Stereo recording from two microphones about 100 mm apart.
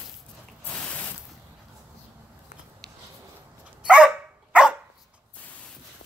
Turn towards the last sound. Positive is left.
turn(degrees=-5)  # may be behind; listen again after turning